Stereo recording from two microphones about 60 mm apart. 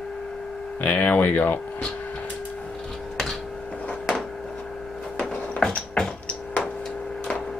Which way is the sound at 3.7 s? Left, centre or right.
Centre.